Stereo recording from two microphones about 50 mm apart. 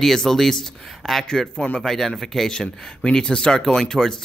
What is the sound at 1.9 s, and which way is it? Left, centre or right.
Speech, centre.